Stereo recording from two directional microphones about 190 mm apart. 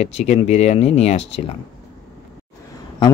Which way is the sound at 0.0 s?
35° left (ahead or behind).